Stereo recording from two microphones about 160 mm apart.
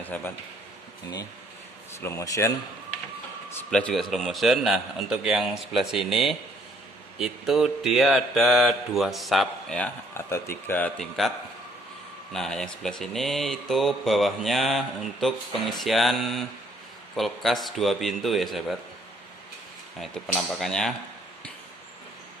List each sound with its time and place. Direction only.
0.0 s speech: 10° left (ahead or behind)
2.0 s speech: 15° left (ahead or behind)
3.7 s mantra: centre (ahead or behind)
10.1 s speech: 15° left (ahead or behind)
12.3 s mantra: 5° left (ahead or behind)
20.0 s mantra: centre (ahead or behind)